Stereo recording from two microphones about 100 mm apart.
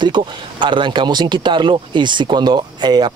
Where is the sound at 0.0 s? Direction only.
50° right (ahead or behind).